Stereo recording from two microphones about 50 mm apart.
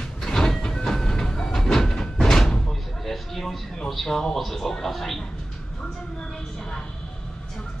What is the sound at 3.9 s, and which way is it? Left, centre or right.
Speech, centre.